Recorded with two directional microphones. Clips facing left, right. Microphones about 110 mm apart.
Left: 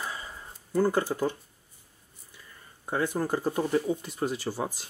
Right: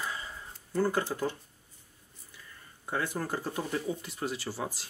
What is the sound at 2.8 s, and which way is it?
Speech, 20° left (ahead or behind).